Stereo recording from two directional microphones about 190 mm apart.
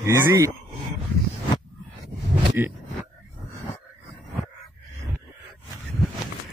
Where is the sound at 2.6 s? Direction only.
10° right (ahead or behind).